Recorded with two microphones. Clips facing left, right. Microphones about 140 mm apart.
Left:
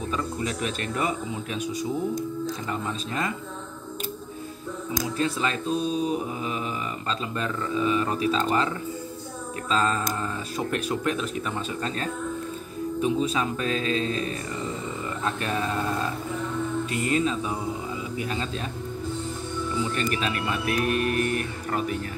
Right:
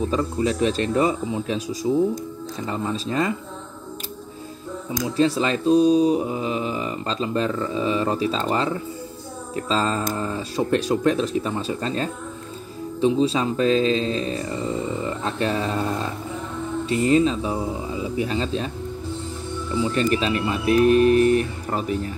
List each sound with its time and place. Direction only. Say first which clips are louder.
0.1 s speech: right 6 dB; 30° right (ahead or behind)
5.1 s speech: right 8 dB; 30° right (ahead or behind)
16.9 s speech: right 9 dB; 25° right (ahead or behind)
19.8 s speech: right 8 dB; 30° right (ahead or behind)